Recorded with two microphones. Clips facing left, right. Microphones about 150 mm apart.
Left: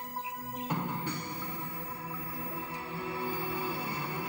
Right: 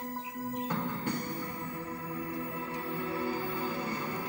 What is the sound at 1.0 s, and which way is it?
Music, 50° right (ahead or behind).